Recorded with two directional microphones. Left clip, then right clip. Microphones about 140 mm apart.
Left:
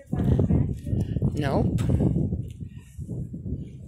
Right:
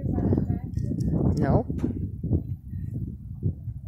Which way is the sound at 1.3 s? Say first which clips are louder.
Even; 30° left (ahead or behind).